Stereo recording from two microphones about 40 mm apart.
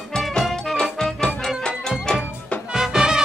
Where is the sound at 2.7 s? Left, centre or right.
Centre.